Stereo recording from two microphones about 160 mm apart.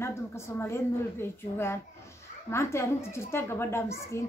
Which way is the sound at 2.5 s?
15° left (ahead or behind).